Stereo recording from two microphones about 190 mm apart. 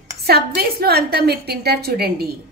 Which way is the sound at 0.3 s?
55° right (ahead or behind).